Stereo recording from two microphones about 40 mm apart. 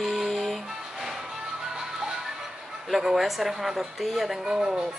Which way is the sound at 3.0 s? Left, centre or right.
Centre.